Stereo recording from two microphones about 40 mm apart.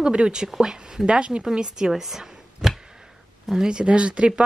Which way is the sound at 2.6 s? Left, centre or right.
Centre.